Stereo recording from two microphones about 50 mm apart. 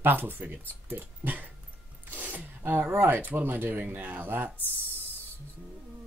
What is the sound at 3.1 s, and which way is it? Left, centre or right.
Speech, right.